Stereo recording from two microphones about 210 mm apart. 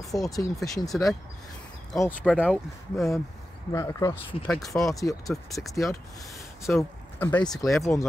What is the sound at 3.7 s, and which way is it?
Speech, 15° left (ahead or behind).